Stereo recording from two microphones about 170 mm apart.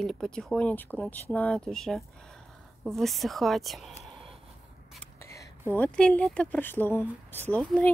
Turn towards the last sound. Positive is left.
turn(degrees=10)  # may be behind; listen again after turning